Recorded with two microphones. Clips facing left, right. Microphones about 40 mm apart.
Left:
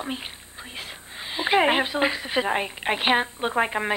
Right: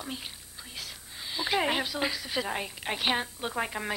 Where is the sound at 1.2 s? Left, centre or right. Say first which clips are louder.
Left 8 dB; left.